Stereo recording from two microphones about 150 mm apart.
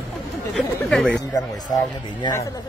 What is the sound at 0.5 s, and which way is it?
Chatter, 5° left (ahead or behind).